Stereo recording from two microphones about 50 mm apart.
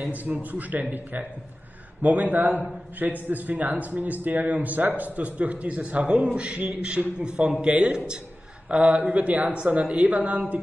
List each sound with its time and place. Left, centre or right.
0.1 s a man's voice: right
2.0 s a man's voice: right